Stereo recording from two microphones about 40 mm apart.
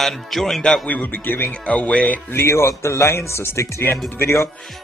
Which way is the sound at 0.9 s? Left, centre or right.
Left.